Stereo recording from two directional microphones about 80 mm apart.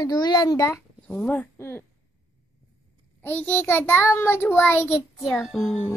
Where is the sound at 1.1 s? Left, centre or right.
Centre.